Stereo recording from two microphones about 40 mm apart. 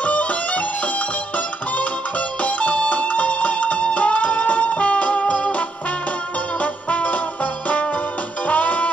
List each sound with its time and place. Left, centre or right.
0.0 s music: left